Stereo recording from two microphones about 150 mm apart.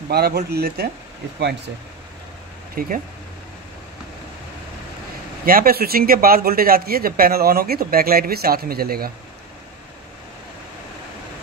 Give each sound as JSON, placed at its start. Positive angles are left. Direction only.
{"t": 0.1, "sound": "speech", "side_deg": -90}
{"t": 2.7, "sound": "speech", "side_deg": -75}
{"t": 5.4, "sound": "speech", "side_deg": -75}